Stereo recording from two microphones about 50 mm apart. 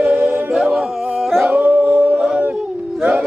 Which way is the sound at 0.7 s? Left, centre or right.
Centre.